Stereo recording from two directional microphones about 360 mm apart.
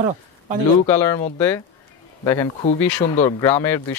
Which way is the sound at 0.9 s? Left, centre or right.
Centre.